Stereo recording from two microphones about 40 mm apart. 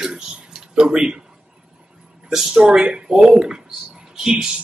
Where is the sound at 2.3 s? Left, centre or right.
Centre.